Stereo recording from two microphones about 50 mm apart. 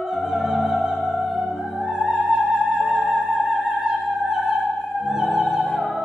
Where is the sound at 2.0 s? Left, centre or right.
Centre.